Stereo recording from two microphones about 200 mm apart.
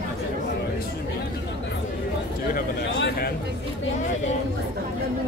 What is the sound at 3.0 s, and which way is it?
Speech, 60° left (ahead or behind).